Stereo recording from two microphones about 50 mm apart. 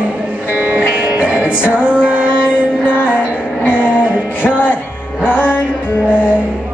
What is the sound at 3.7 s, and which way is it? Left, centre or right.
Music, right.